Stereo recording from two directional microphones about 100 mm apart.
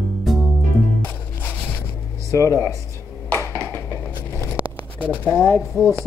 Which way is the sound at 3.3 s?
20° left (ahead or behind).